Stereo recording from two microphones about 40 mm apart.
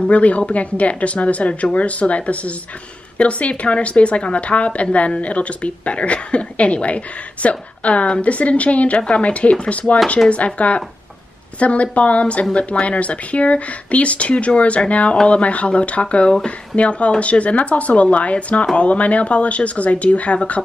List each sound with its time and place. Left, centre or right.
0.0 s speech: left